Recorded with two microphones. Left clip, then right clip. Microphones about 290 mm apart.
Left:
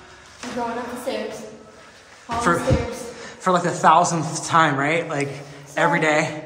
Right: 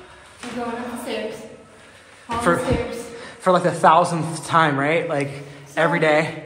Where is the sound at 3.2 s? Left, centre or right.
Centre.